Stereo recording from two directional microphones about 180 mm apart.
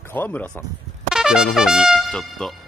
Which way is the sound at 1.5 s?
Centre (ahead or behind).